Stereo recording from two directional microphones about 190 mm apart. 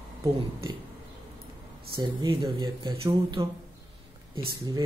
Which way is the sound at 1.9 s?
25° right (ahead or behind).